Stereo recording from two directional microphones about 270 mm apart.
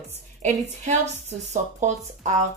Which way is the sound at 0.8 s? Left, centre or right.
Right.